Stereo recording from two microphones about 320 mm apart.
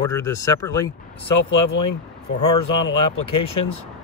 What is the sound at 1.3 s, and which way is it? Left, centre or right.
Speech, left.